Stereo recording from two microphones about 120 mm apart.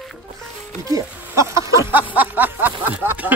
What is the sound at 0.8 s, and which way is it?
Speech, 30° right (ahead or behind).